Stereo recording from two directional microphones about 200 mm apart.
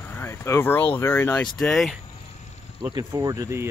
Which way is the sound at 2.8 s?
20° right (ahead or behind).